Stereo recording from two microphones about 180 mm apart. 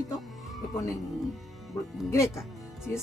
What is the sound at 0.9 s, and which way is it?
Speech, centre (ahead or behind).